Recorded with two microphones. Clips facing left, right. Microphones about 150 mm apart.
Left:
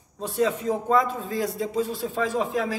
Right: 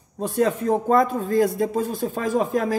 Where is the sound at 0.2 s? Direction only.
50° right (ahead or behind).